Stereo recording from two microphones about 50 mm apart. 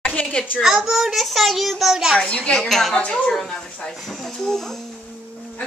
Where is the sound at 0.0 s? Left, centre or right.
Left.